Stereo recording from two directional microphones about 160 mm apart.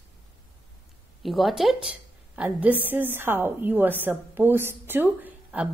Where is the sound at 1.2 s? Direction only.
Centre (ahead or behind).